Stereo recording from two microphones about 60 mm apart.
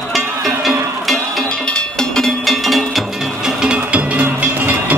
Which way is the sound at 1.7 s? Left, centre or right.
Centre.